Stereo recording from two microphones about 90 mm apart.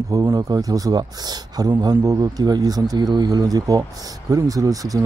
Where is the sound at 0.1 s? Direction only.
45° right (ahead or behind).